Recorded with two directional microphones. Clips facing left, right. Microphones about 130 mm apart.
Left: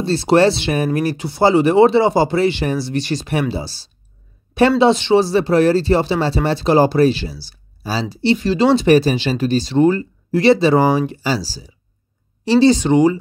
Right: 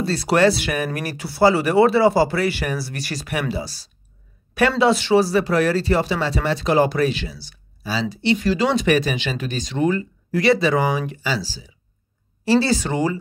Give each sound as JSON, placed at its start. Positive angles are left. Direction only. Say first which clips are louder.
{"t": 0.0, "sound": "speech", "louder": "left 4 dB", "side_deg": 25}
{"t": 12.4, "sound": "speech", "louder": "left 6 dB", "side_deg": 20}